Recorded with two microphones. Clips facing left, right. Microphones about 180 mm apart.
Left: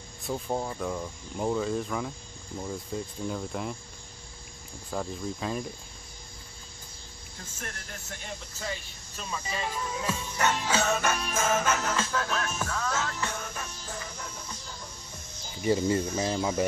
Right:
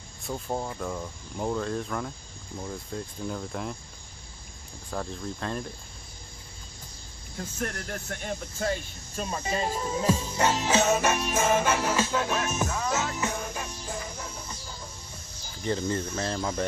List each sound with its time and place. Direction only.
0.3 s speech: centre (ahead or behind)
4.9 s speech: 5° left (ahead or behind)
7.5 s speech: 60° right (ahead or behind); by 14.3 s 10° right (ahead or behind)
15.6 s speech: 10° left (ahead or behind)